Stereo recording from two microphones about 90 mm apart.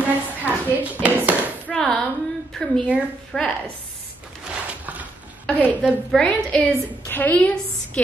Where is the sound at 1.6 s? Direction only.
10° left (ahead or behind).